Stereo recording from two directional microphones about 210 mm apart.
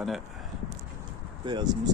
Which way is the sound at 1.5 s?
20° right (ahead or behind).